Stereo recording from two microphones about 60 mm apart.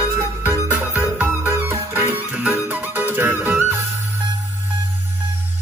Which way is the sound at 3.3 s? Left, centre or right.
Right.